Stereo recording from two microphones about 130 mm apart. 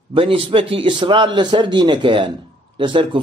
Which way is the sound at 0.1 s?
45° right (ahead or behind).